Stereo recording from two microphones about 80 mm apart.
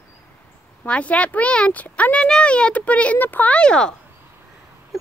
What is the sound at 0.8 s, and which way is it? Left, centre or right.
Speech, centre.